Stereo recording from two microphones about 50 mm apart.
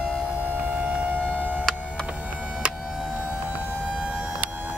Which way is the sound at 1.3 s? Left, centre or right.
Right.